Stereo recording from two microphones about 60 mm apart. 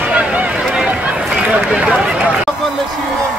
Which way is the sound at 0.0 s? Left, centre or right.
Right.